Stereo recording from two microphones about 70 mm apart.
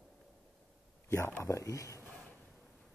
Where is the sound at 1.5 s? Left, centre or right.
Left.